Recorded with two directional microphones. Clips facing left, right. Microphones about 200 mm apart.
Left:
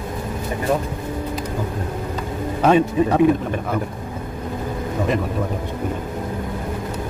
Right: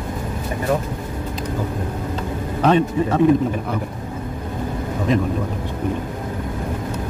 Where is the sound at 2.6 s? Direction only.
10° left (ahead or behind).